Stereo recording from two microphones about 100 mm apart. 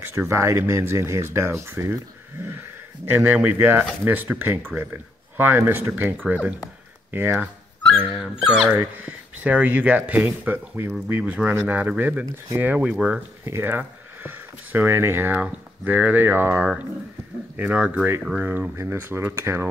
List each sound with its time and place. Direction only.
0.0 s speech: 25° right (ahead or behind)
3.4 s speech: 25° right (ahead or behind)
18.4 s speech: 20° right (ahead or behind)